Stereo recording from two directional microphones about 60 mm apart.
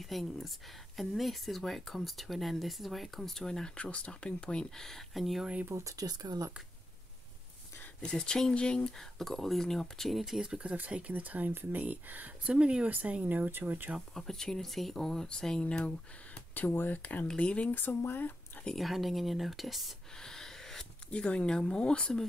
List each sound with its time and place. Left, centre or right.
0.0 s speech: centre
3.7 s speech: left; by 5.4 s centre
5.4 s speech: centre
5.9 s speech: right
8.0 s speech: centre
10.4 s speech: centre; by 13.9 s right
14.1 s speech: centre
16.5 s speech: left
17.7 s speech: left
18.8 s speech: centre
20.2 s gasp: centre
21.1 s speech: centre